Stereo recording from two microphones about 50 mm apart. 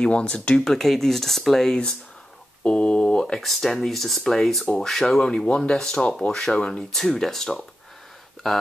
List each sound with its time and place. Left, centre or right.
0.0 s speech: centre
0.6 s speech: centre
2.6 s speech: left
3.3 s speech: centre
5.2 s speech: centre